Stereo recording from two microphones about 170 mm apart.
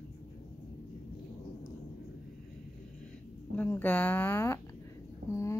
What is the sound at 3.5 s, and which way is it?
Speech, 10° left (ahead or behind).